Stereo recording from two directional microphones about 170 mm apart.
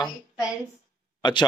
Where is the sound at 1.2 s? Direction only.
25° left (ahead or behind).